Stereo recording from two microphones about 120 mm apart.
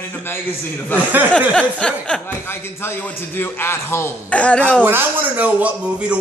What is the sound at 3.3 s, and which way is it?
A man's voice, 20° left (ahead or behind).